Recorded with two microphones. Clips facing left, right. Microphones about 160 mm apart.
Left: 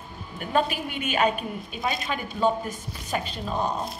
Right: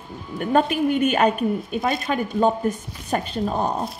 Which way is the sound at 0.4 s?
50° right (ahead or behind).